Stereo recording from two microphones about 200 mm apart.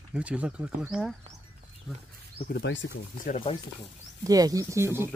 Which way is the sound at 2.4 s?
60° left (ahead or behind).